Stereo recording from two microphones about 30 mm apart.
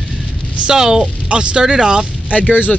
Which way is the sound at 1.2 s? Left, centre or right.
Right.